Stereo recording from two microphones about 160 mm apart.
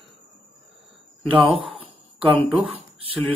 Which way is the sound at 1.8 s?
35° right (ahead or behind).